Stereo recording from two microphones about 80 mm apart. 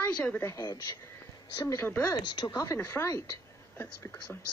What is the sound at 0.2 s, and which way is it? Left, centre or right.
Speech, left.